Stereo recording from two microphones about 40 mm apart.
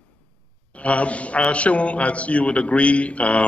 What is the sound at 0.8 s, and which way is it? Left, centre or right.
A woman's voice, left.